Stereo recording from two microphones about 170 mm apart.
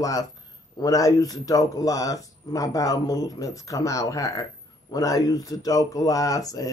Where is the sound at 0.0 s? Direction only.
20° left (ahead or behind).